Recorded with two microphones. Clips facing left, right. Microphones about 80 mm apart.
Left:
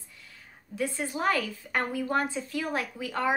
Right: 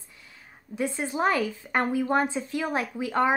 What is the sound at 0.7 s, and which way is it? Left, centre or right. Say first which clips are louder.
Speech: right 3 dB; right.